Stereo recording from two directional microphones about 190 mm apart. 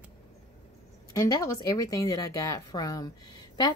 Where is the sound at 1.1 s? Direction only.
15° left (ahead or behind).